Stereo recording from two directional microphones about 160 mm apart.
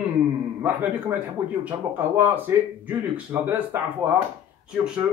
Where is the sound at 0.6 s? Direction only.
10° right (ahead or behind).